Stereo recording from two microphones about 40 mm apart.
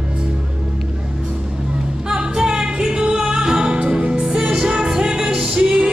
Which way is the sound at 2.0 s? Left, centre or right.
Centre.